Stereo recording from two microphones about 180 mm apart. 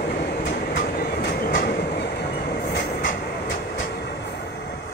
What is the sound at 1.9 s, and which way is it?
Train, 65° left (ahead or behind).